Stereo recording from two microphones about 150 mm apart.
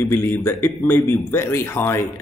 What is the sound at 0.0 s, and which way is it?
Speech, 15° left (ahead or behind).